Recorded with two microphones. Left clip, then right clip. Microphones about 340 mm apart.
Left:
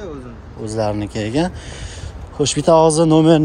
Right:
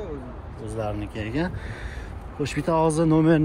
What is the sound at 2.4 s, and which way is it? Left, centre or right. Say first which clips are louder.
Speech: left 10 dB; centre.